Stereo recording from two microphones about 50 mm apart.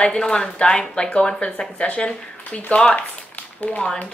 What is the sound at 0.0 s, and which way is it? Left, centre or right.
A child's voice, centre.